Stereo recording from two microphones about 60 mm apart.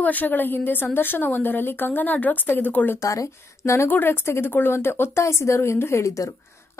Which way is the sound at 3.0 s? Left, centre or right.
Left.